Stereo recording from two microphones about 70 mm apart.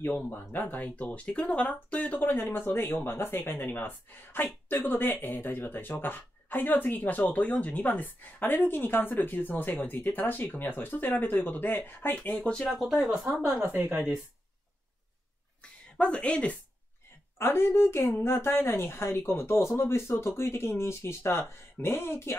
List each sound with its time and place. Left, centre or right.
0.1 s speech: left
2.2 s speech: left
12.5 s speech: centre
12.8 s speech: centre
13.7 s speech: right
16.0 s speech: centre
17.4 s speech: left